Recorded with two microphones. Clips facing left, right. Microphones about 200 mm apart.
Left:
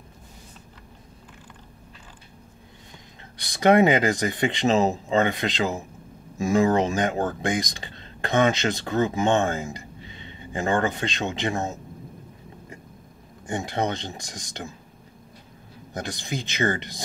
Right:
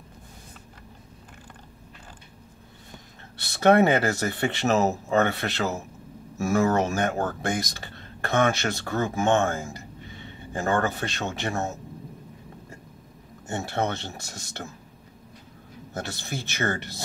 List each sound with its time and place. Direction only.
3.3 s speech: 15° left (ahead or behind)
13.5 s speech: 15° left (ahead or behind)
15.9 s speech: 15° left (ahead or behind)